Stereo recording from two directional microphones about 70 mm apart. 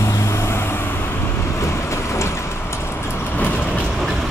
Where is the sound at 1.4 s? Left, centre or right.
Left.